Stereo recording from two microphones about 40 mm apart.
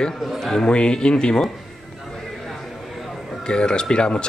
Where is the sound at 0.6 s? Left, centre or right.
Left.